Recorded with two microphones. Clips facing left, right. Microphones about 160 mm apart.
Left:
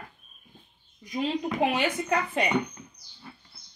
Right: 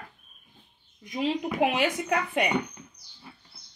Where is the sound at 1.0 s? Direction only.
5° right (ahead or behind).